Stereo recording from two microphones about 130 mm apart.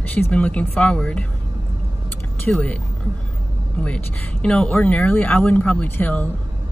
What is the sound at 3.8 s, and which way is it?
Speech, 10° left (ahead or behind).